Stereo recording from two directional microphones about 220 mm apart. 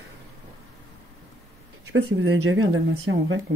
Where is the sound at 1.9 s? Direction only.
60° right (ahead or behind).